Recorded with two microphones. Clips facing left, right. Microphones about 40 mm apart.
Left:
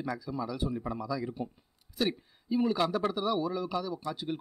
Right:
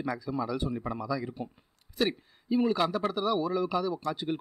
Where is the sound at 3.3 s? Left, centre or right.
Centre.